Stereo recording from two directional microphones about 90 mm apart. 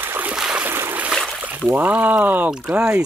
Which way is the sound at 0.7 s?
25° right (ahead or behind).